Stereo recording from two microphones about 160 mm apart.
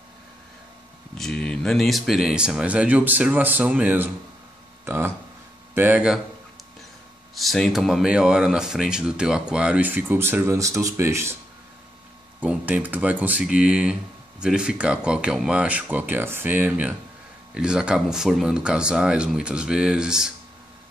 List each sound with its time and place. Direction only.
1.1 s speech: 5° left (ahead or behind)
7.3 s speech: centre (ahead or behind); by 11.3 s 15° right (ahead or behind)
12.4 s speech: 10° right (ahead or behind)